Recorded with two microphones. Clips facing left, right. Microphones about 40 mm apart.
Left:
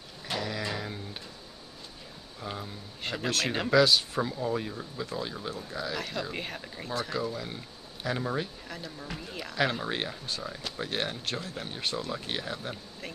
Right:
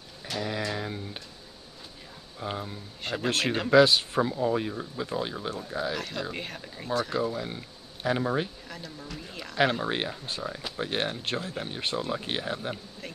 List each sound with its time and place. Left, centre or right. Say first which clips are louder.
0.3 s a sound: even; left
0.7 s a sound: right 3 dB; centre
2.4 s a sound: right 4 dB; centre
3.0 s speech: right 2 dB; centre
3.7 s speech: right 3 dB; right
4.2 s speech: right 4 dB; centre
5.9 s speech: right 1 dB; centre
7.2 s speech: right 4 dB; centre
8.6 s speech: left 1 dB; centre
9.6 s speech: right 4 dB; centre